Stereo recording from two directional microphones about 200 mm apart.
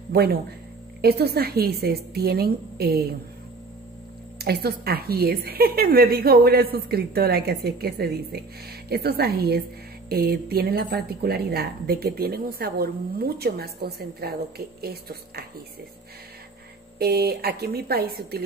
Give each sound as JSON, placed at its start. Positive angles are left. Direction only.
{"t": 0.1, "sound": "a woman's voice", "side_deg": -50}
{"t": 4.4, "sound": "a woman's voice", "side_deg": -50}
{"t": 17.0, "sound": "a woman's voice", "side_deg": -50}